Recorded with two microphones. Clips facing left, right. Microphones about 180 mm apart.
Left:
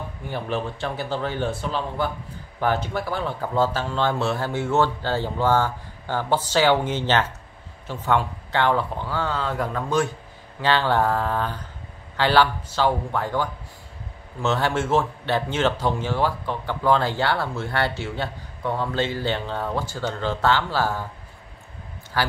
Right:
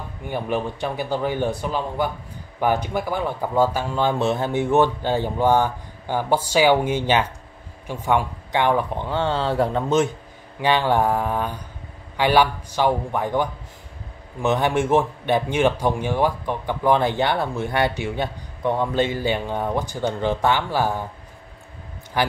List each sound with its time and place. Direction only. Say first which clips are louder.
0.3 s speech: right 3 dB; 15° right (ahead or behind)
22.2 s speech: right 3 dB; 20° right (ahead or behind)